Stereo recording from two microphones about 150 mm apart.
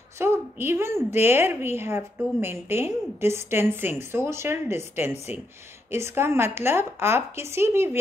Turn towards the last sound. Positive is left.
turn(degrees=-15)  # may be behind; listen again after turning